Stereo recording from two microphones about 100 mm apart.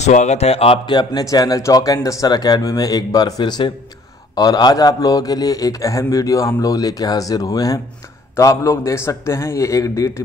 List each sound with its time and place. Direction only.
0.0 s speech: 90° left
0.8 s a man's voice: 45° left (ahead or behind)